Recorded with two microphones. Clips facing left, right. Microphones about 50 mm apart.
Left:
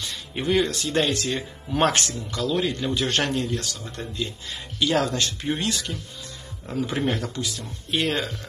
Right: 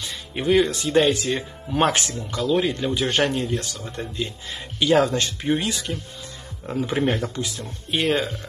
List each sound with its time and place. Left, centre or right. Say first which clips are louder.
0.0 s speech: right 2 dB; centre
7.9 s speech: right 3 dB; centre